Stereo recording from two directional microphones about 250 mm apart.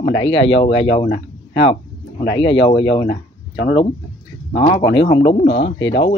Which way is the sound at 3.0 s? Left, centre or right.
Left.